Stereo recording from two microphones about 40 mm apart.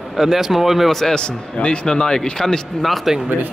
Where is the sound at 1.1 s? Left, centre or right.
Left.